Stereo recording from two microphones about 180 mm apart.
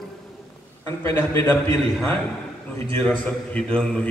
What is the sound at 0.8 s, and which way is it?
Speech, 10° left (ahead or behind).